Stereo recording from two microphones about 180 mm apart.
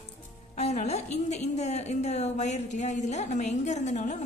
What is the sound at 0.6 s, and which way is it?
A woman's voice, 40° left (ahead or behind).